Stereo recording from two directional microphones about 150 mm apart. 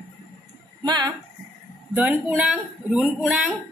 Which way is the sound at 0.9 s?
25° right (ahead or behind).